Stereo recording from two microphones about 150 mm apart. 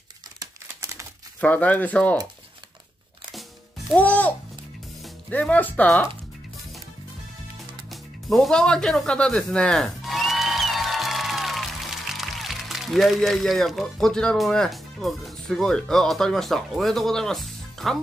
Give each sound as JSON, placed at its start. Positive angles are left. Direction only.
{"t": 0.4, "sound": "crumpling", "side_deg": -20}
{"t": 1.4, "sound": "speech", "side_deg": 10}
{"t": 3.9, "sound": "speech", "side_deg": 10}
{"t": 5.3, "sound": "speech", "side_deg": 10}
{"t": 7.9, "sound": "speech", "side_deg": 0}